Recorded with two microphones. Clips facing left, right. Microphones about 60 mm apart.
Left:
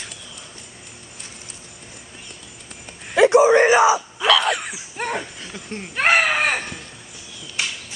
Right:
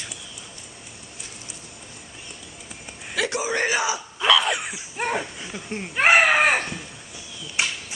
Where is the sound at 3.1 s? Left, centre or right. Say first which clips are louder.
Left 12 dB; left.